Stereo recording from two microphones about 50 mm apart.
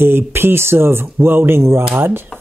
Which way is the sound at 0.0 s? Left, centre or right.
Right.